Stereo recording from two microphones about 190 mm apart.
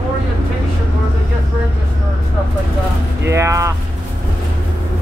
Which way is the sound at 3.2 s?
15° right (ahead or behind).